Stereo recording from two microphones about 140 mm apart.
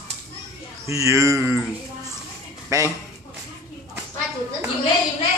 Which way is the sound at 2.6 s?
20° right (ahead or behind).